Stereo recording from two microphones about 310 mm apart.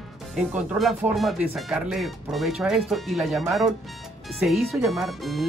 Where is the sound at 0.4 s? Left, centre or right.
Centre.